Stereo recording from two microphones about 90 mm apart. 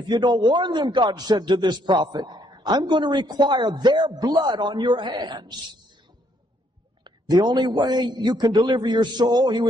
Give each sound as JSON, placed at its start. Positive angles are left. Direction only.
{"t": 0.1, "sound": "a man's voice", "side_deg": -55}
{"t": 7.1, "sound": "a man's voice", "side_deg": -50}